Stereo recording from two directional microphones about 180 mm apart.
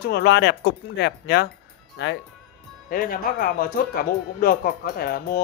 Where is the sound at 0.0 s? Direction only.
65° left (ahead or behind).